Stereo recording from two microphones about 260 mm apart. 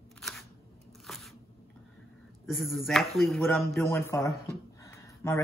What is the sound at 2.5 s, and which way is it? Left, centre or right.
Speech, centre.